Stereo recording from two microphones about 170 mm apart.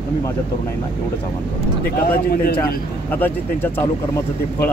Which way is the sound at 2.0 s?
65° left (ahead or behind).